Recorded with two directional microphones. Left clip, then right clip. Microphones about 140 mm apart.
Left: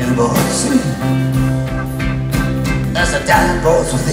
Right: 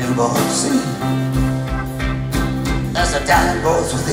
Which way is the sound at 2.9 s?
25° right (ahead or behind).